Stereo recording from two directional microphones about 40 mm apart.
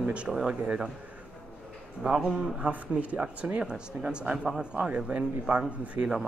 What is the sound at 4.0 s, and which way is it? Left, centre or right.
Speech, right.